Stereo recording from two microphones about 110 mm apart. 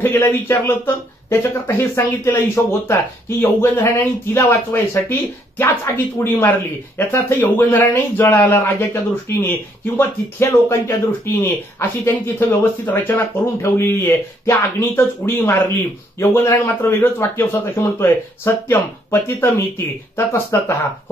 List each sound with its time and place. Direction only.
0.0 s speech: 20° left (ahead or behind)